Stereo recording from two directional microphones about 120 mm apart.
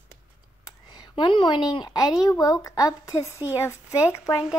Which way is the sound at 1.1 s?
40° left (ahead or behind).